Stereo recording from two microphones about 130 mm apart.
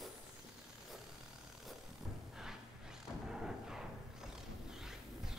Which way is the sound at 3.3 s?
5° right (ahead or behind).